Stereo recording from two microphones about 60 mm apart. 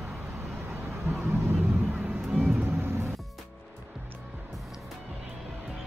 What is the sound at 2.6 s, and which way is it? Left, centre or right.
Music, right.